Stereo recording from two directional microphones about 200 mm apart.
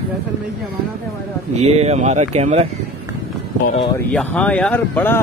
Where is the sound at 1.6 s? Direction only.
30° right (ahead or behind).